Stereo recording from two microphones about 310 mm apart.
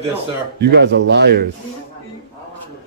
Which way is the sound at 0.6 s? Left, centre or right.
Right.